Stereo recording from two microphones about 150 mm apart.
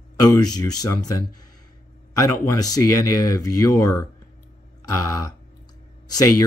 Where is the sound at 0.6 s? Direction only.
25° left (ahead or behind).